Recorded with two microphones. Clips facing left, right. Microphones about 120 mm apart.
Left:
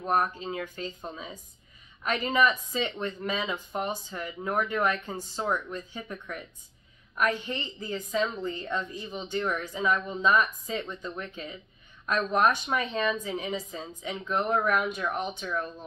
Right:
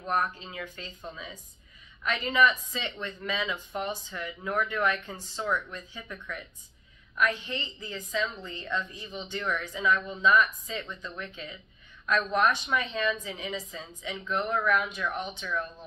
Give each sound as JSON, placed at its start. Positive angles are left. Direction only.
{"t": 0.0, "sound": "speech", "side_deg": 35}
{"t": 7.2, "sound": "a woman's voice", "side_deg": 40}